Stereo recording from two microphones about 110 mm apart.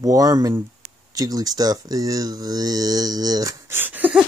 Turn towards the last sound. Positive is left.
turn(degrees=-15)  # may be behind; listen again after turning